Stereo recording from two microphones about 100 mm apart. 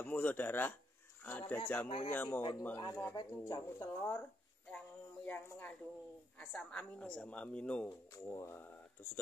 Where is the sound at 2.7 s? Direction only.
30° left (ahead or behind).